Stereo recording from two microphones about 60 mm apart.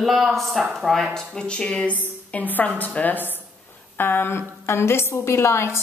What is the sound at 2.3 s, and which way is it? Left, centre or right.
A woman's voice, left.